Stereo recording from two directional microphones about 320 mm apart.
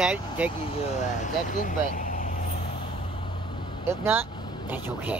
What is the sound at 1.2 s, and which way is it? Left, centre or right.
Speech, left.